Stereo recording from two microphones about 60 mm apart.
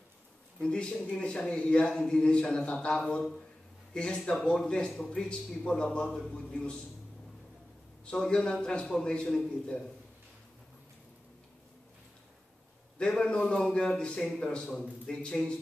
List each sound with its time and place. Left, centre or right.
0.6 s speech: centre
8.0 s speech: centre
13.0 s speech: centre